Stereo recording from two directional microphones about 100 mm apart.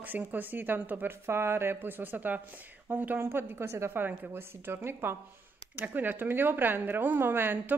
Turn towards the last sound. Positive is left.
turn(degrees=-20)  # may be behind; listen again after turning